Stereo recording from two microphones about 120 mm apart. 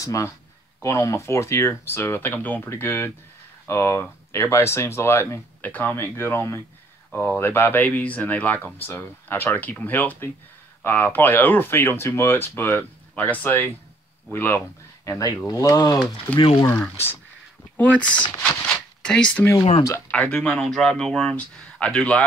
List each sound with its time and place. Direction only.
0.0 s speech: 30° left (ahead or behind)
15.0 s speech: 30° left (ahead or behind)
16.3 s speech: 10° left (ahead or behind)
18.0 s speech: 40° left (ahead or behind)
19.0 s speech: 10° left (ahead or behind)